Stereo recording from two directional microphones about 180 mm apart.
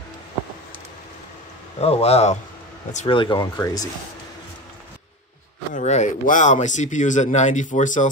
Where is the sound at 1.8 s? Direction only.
35° left (ahead or behind).